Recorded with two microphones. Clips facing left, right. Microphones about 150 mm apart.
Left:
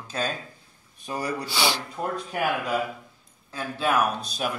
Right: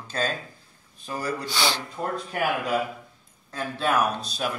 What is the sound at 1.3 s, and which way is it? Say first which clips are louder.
A man's voice: left 1 dB; 10° left (ahead or behind).